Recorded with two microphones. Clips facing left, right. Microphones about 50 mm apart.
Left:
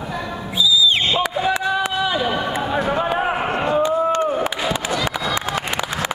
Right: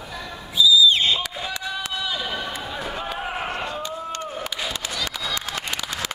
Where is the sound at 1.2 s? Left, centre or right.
Left.